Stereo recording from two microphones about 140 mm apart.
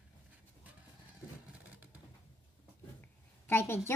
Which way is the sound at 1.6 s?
10° right (ahead or behind).